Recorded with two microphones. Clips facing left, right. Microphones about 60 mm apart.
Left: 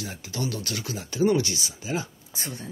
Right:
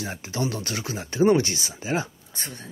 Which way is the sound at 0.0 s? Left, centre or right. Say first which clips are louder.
Right 3 dB; right.